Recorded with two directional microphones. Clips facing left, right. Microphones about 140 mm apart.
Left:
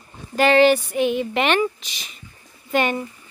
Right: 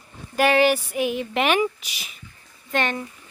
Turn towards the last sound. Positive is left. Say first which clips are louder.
# left 4 dB
turn(degrees=5)  # may be behind; listen again after turning